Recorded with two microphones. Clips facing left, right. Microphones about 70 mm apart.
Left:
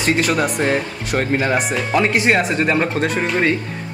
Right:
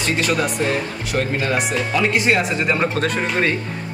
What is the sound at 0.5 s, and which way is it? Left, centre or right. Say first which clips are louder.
Speech: left 2 dB; left.